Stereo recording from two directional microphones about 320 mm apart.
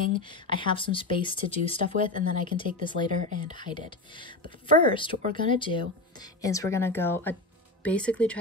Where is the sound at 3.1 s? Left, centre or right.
Right.